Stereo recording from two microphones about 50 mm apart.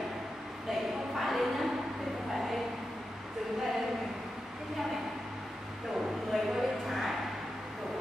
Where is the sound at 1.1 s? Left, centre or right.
Centre.